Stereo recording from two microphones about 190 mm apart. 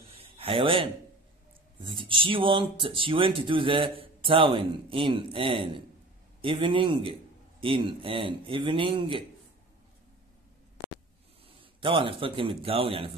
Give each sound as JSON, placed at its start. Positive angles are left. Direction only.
{"t": 0.1, "sound": "a sound", "side_deg": -30}
{"t": 1.8, "sound": "speech", "side_deg": -25}
{"t": 11.4, "sound": "speech", "side_deg": -30}